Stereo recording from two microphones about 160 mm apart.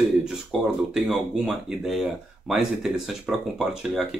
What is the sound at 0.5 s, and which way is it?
Speech, centre (ahead or behind).